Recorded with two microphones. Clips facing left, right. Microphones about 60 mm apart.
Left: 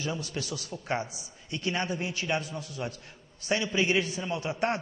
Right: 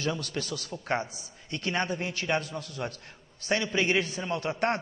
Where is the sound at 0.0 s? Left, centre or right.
Right.